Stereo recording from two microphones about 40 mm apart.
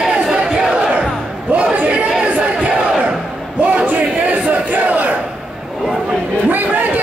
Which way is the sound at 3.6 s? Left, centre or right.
Right.